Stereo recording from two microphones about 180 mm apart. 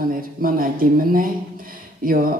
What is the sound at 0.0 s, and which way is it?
Speech, 50° right (ahead or behind).